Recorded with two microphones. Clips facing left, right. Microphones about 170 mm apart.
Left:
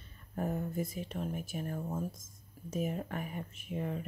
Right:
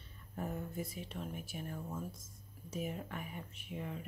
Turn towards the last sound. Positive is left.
turn(degrees=45)  # may be behind; listen again after turning